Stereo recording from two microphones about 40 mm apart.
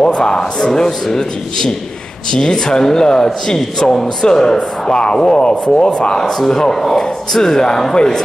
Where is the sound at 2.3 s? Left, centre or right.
Centre.